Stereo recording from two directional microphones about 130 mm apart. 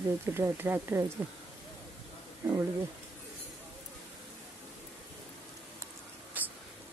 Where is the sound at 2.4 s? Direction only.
20° right (ahead or behind).